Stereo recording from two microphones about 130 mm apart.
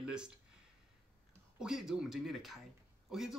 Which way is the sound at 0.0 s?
5° right (ahead or behind).